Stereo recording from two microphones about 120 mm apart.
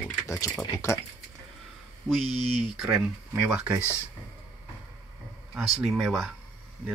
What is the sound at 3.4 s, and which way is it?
Speech, 10° right (ahead or behind).